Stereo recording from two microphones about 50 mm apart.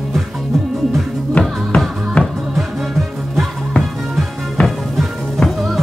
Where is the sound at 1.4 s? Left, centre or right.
Left.